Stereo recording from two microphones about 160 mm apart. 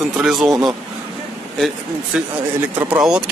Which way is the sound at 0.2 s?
Centre (ahead or behind).